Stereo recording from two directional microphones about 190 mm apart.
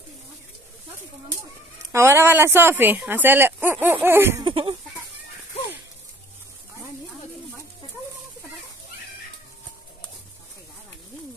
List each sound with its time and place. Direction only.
1.9 s speech: 15° right (ahead or behind)
4.5 s chicken: 25° right (ahead or behind)